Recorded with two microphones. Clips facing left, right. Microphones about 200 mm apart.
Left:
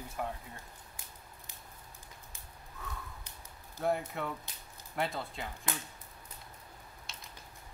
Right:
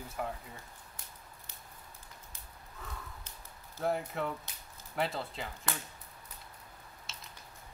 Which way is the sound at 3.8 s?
Centre (ahead or behind).